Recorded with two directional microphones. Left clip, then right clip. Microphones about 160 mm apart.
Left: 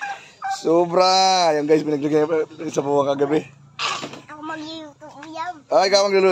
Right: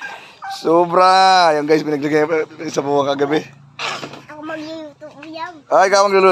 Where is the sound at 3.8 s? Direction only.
35° right (ahead or behind).